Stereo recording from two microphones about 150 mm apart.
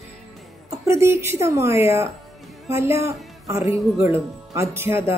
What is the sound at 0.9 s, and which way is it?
A woman's voice, 20° right (ahead or behind).